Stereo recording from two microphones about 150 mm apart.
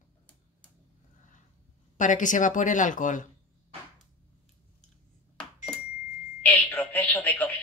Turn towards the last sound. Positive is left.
turn(degrees=10)  # may be behind; listen again after turning